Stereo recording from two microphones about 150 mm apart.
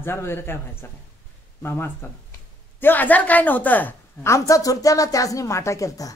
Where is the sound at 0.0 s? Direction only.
15° left (ahead or behind).